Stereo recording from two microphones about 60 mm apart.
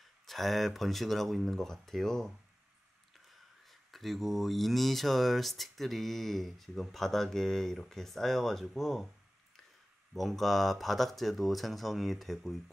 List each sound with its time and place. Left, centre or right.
0.3 s speech: centre
3.6 s speech: centre
10.1 s speech: centre